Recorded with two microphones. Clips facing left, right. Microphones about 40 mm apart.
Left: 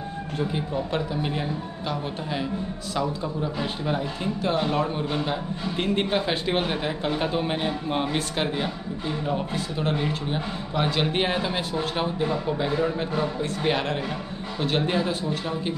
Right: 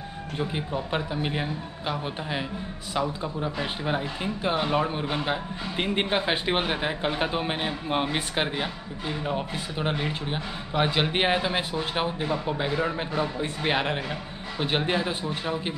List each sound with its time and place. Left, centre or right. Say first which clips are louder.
0.4 s a man's voice: left 2 dB; centre